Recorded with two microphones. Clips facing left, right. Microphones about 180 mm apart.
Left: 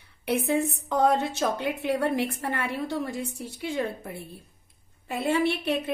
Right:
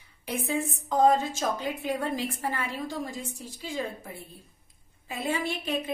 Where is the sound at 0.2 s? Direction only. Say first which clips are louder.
Left 5 dB; 65° left (ahead or behind).